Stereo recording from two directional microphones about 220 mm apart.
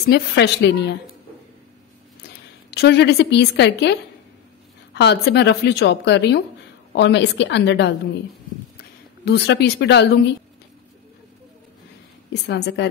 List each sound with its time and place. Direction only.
0.0 s a woman's voice: 50° left (ahead or behind)
2.7 s a woman's voice: 50° left (ahead or behind)
9.2 s a woman's voice: 50° left (ahead or behind)
12.3 s a woman's voice: 50° left (ahead or behind)